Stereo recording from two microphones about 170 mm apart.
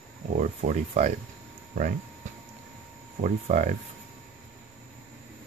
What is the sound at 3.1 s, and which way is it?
Speech, 45° right (ahead or behind).